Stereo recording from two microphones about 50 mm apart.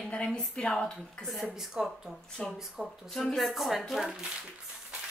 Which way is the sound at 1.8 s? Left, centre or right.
Centre.